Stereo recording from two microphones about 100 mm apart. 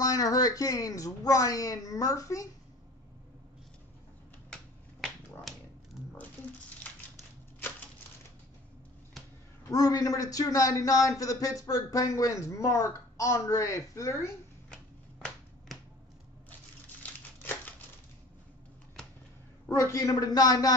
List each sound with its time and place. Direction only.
0.0 s a man's voice: 35° left (ahead or behind)
9.7 s a man's voice: 35° left (ahead or behind)
17.0 s crumpling: 15° left (ahead or behind)
19.7 s a man's voice: 30° left (ahead or behind)